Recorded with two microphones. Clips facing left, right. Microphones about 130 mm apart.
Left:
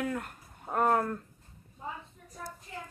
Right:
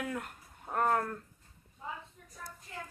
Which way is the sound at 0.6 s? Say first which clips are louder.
Left 3 dB; 10° left (ahead or behind).